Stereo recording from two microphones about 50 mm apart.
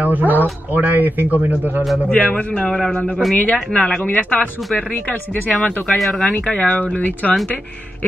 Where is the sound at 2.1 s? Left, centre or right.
Left.